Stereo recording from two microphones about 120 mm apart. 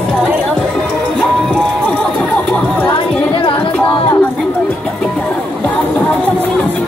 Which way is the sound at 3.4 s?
45° left (ahead or behind).